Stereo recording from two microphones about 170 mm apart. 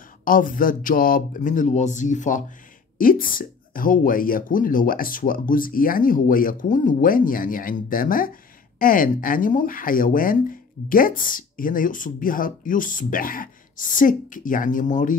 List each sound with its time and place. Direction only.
0.2 s speech: 55° left (ahead or behind)